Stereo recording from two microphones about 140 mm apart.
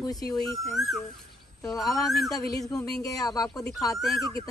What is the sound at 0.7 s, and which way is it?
Speech, centre (ahead or behind).